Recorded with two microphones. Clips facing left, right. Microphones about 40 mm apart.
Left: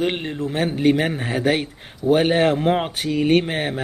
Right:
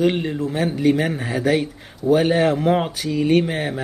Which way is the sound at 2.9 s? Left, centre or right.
Left.